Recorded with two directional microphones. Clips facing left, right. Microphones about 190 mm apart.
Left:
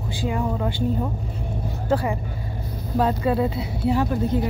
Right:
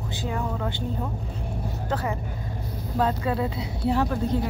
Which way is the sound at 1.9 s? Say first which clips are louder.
Left 6 dB; 15° left (ahead or behind).